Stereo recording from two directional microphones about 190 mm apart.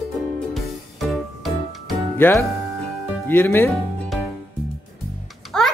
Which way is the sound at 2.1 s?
10° left (ahead or behind).